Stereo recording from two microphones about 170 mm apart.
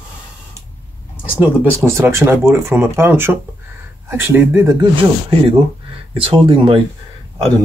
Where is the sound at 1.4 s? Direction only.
15° right (ahead or behind).